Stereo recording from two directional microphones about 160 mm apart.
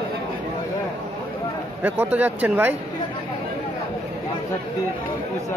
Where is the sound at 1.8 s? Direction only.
10° right (ahead or behind).